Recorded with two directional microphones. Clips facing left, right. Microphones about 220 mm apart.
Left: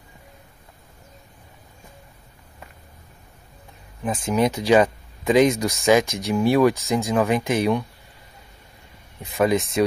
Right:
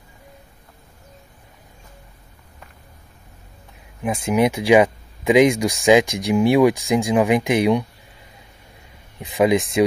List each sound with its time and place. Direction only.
4.0 s speech: 10° right (ahead or behind)
9.2 s speech: 15° right (ahead or behind)